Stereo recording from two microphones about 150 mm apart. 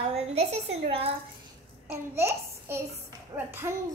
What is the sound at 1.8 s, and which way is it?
A child's voice, 15° right (ahead or behind).